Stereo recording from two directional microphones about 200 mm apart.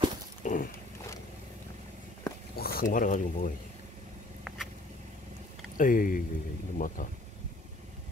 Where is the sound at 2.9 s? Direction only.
40° left (ahead or behind).